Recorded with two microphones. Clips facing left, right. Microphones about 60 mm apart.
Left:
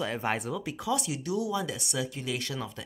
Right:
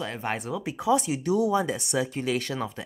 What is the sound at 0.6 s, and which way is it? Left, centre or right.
Speech, right.